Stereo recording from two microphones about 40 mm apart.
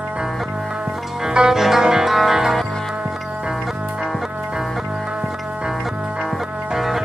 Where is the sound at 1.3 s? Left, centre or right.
Centre.